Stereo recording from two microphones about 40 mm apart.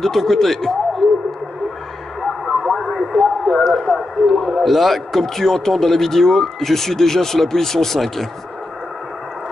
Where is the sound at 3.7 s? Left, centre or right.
Centre.